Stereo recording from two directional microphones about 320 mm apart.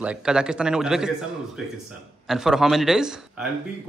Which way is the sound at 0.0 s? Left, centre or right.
Centre.